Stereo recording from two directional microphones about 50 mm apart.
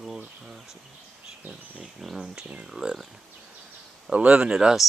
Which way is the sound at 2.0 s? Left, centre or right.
Centre.